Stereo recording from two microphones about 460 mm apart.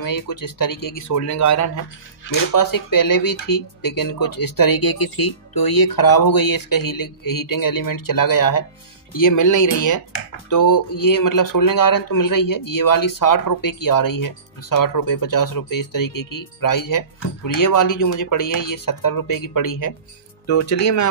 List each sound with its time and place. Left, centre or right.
0.0 s speech: left